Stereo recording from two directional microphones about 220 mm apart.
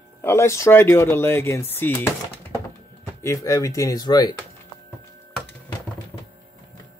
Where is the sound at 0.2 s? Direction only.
10° left (ahead or behind).